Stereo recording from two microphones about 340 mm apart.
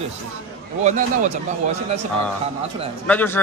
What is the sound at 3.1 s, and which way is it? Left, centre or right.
Speech, centre.